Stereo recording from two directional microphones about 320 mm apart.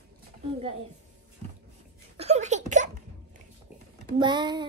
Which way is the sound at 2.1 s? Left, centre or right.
Centre.